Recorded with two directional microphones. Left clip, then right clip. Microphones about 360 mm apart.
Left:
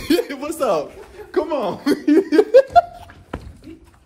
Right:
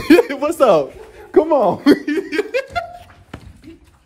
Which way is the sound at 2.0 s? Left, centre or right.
Centre.